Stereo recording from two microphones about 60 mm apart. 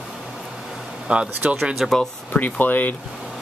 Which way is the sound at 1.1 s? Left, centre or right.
Centre.